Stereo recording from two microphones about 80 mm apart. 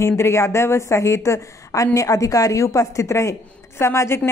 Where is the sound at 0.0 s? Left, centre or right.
Left.